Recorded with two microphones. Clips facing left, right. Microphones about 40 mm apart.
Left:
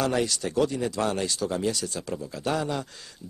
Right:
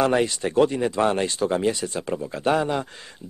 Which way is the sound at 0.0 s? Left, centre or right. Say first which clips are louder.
Right 5 dB; right.